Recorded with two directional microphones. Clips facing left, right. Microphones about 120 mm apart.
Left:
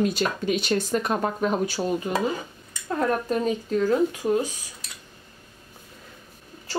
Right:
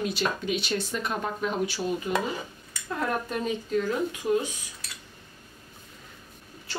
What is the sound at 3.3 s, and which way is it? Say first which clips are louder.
Speech: left 4 dB; 40° left (ahead or behind).